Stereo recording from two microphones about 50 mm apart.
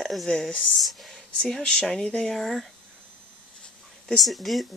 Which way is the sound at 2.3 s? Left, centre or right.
Centre.